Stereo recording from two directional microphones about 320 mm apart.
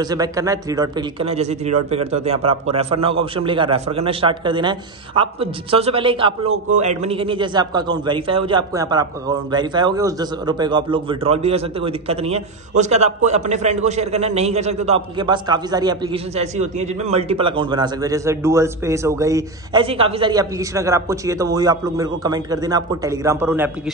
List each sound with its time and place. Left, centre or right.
0.0 s a man's voice: centre